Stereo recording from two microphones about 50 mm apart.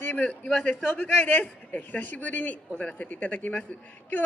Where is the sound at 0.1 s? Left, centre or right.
Left.